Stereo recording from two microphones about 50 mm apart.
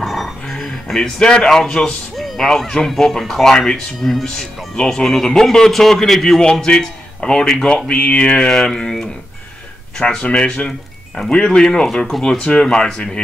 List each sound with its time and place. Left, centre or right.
0.0 s music: centre
2.1 s speech: centre